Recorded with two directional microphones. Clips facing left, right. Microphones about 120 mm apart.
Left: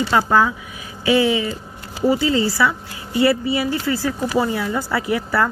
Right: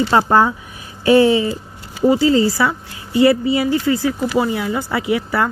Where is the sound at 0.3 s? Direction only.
40° right (ahead or behind).